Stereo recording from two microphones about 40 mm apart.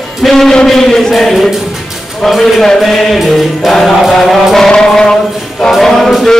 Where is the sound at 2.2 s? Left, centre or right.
Centre.